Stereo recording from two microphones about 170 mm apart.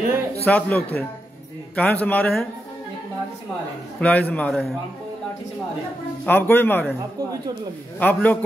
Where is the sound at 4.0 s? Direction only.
10° left (ahead or behind).